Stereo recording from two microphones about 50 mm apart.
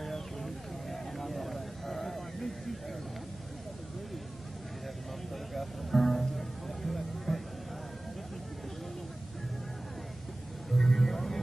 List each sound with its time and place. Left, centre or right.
0.0 s a sound: centre
5.3 s music: centre
10.7 s music: centre